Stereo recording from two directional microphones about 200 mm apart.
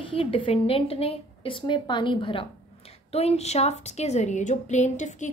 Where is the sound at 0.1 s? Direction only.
30° left (ahead or behind).